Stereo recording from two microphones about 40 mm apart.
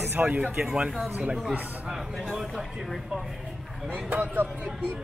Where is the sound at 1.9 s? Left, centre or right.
Centre.